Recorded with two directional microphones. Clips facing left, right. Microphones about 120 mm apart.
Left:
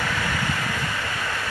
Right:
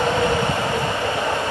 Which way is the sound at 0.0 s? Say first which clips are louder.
Right 8 dB; 25° right (ahead or behind).